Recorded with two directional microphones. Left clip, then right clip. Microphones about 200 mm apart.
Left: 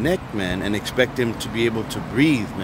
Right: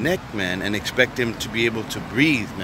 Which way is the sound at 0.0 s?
Centre (ahead or behind).